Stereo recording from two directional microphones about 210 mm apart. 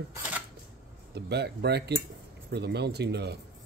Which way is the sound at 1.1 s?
55° right (ahead or behind).